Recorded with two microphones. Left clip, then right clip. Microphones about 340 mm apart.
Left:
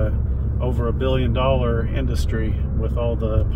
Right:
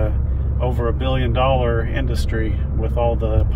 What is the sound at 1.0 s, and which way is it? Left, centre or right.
Speech, right.